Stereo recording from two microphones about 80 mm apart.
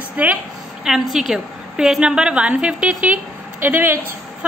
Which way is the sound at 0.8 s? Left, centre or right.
Centre.